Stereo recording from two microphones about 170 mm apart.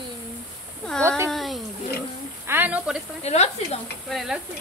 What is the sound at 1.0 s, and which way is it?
Speech, 15° right (ahead or behind).